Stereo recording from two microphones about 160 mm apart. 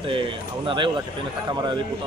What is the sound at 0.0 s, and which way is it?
Speech, 30° right (ahead or behind).